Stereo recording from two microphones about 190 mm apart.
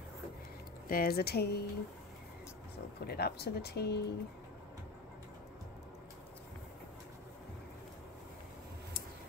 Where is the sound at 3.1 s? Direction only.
55° left (ahead or behind).